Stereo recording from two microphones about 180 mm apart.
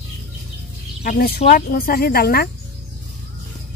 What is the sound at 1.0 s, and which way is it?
Speech, 55° left (ahead or behind).